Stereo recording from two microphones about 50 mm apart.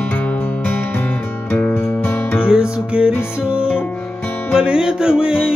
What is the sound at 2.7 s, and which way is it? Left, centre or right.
Music, right.